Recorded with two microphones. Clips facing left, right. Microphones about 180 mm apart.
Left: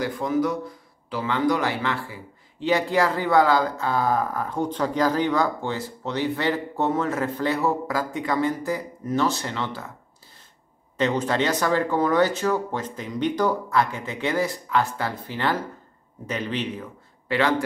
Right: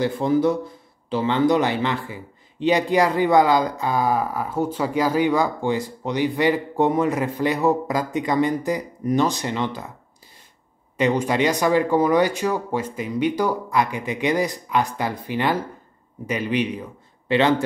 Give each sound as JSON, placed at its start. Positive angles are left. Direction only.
{"t": 0.0, "sound": "speech", "side_deg": -25}
{"t": 11.0, "sound": "speech", "side_deg": -10}